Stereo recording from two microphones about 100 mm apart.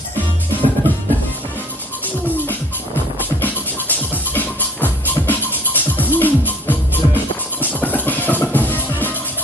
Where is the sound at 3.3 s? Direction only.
15° left (ahead or behind).